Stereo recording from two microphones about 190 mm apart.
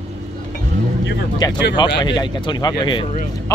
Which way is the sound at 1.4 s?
20° left (ahead or behind).